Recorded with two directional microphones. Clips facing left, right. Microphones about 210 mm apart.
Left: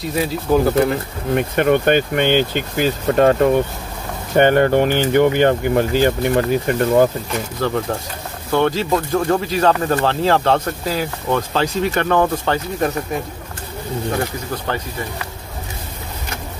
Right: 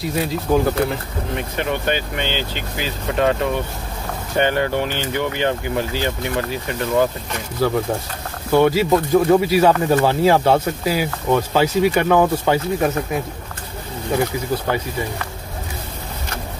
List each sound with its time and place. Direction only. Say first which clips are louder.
0.0 s speech: left 1 dB; centre (ahead or behind)
1.3 s speech: left 9 dB; 55° left (ahead or behind)
7.6 s speech: right 3 dB; 10° right (ahead or behind)